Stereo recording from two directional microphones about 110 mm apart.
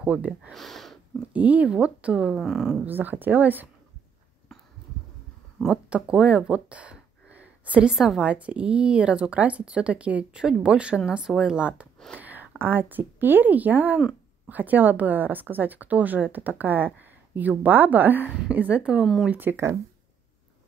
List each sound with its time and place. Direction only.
0.0 s speech: 10° right (ahead or behind)
0.5 s speech: centre (ahead or behind)
1.3 s speech: 15° right (ahead or behind)
2.9 s speech: 15° right (ahead or behind)
5.6 s a woman's voice: 10° right (ahead or behind)